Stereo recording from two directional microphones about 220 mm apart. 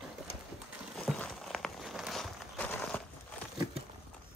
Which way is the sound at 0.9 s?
5° left (ahead or behind).